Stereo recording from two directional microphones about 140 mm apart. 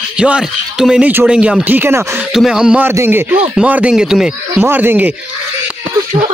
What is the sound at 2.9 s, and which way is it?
Speech, 20° right (ahead or behind).